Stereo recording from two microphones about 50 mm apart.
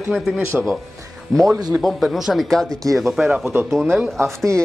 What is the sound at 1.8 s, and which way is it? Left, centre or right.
A man's voice, centre.